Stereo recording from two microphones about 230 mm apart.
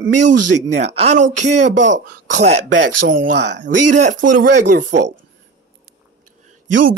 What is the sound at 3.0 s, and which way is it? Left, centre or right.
Speech, right.